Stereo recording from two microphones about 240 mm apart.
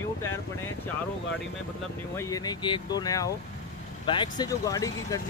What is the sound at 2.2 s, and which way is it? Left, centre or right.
Speech, centre.